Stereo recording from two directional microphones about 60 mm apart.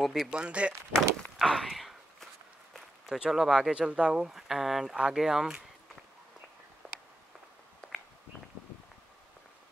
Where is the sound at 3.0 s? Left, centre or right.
Centre.